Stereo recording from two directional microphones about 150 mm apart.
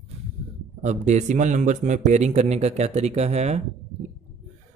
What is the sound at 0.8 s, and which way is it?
Speech, 50° right (ahead or behind).